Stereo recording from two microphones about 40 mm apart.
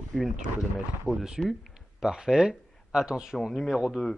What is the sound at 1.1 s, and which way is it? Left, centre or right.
A man's voice, centre.